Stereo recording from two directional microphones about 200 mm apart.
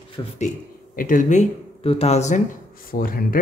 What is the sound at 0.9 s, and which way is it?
Speech, 40° left (ahead or behind).